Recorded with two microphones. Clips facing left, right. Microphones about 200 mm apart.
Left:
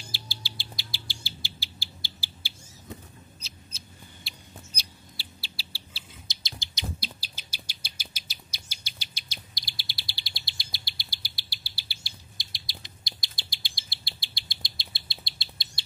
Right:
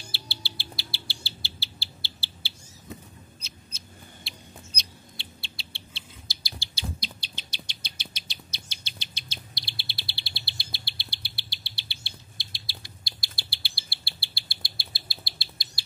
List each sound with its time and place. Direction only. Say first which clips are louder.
0.1 s bird: right 1 dB; 15° left (ahead or behind)
3.3 s a sound: even; centre (ahead or behind)
6.4 s bird: even; 20° left (ahead or behind)
7.0 s bird: right 1 dB; 5° left (ahead or behind)
9.7 s insect: right 2 dB; 10° left (ahead or behind)